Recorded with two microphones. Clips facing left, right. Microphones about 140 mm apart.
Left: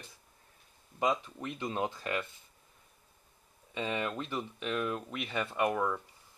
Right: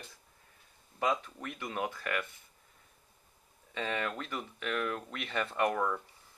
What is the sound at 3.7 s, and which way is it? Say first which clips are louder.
Speech: left 1 dB; 15° left (ahead or behind).